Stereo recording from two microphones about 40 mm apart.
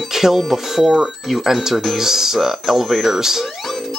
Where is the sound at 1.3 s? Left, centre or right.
Centre.